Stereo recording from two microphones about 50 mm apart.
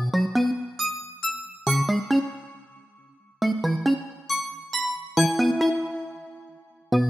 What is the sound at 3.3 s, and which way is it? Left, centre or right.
Music, centre.